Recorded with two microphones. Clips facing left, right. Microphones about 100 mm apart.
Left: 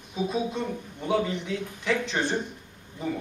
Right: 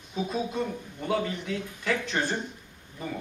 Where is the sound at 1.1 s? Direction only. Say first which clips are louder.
Left 2 dB; centre (ahead or behind).